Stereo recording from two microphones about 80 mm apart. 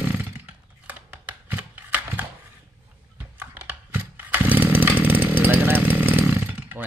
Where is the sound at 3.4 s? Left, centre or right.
Right.